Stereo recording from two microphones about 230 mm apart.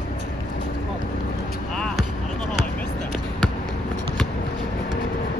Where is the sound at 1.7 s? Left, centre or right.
Centre.